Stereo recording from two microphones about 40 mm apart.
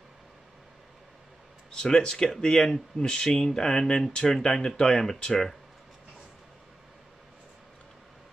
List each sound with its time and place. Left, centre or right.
1.8 s speech: centre